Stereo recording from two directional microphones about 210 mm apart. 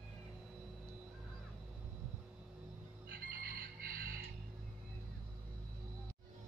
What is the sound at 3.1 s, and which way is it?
Music, 45° right (ahead or behind).